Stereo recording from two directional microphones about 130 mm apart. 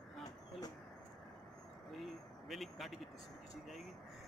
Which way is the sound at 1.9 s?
Centre (ahead or behind).